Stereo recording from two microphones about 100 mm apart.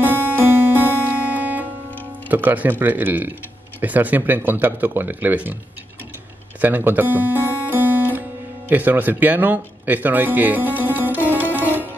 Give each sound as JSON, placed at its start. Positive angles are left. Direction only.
{"t": 0.0, "sound": "music", "side_deg": -15}
{"t": 2.2, "sound": "speech", "side_deg": -15}
{"t": 6.6, "sound": "music", "side_deg": -20}
{"t": 8.6, "sound": "speech", "side_deg": -15}
{"t": 11.2, "sound": "music", "side_deg": -20}